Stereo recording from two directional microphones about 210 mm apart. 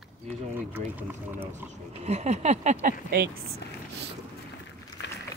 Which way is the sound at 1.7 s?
30° right (ahead or behind).